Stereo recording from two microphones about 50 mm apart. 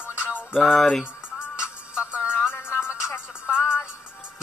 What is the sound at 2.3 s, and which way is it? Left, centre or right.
Music, left.